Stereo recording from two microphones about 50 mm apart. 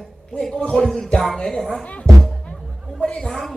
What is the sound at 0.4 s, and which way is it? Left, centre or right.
Speech, centre.